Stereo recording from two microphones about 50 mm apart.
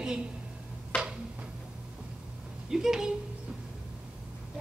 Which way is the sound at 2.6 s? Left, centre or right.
Centre.